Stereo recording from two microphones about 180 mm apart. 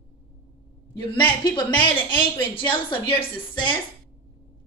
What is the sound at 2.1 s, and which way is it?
A woman's voice, 25° left (ahead or behind).